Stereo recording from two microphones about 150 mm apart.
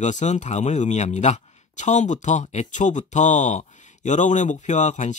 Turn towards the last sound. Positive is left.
turn(degrees=50)  # may be behind; listen again after turning